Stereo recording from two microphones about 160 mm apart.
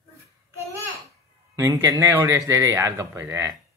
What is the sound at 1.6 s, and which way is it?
Speech, 20° right (ahead or behind).